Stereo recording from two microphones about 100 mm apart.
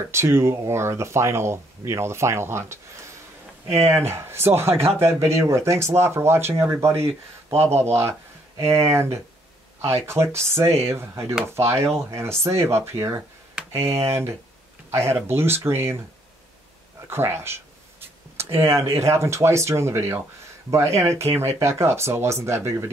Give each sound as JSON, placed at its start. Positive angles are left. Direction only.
{"t": 0.1, "sound": "speech", "side_deg": -25}
{"t": 14.9, "sound": "speech", "side_deg": -25}
{"t": 17.1, "sound": "speech", "side_deg": -25}